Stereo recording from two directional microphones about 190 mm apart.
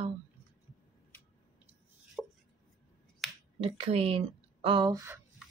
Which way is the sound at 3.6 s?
30° right (ahead or behind).